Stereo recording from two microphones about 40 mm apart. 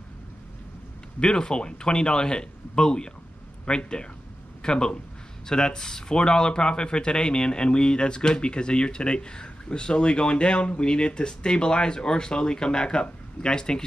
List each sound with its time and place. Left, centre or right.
1.2 s speech: left